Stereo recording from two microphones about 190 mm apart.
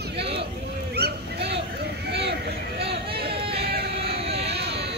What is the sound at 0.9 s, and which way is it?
Honk, 60° right (ahead or behind).